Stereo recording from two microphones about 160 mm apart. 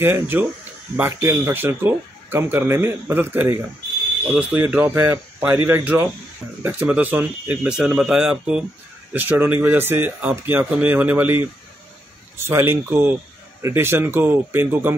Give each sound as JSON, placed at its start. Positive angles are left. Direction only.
{"t": 0.0, "sound": "speech", "side_deg": -15}